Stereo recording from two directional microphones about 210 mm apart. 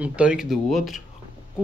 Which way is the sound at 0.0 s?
5° right (ahead or behind).